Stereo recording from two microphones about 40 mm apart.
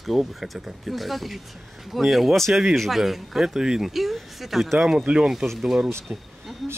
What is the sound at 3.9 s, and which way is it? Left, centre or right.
Speech, centre.